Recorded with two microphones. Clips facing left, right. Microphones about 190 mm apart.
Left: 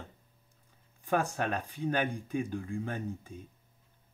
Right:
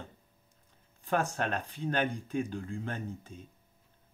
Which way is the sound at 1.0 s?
10° left (ahead or behind).